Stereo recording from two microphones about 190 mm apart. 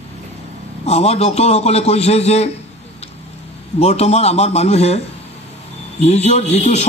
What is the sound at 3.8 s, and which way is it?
A man's voice, 35° left (ahead or behind).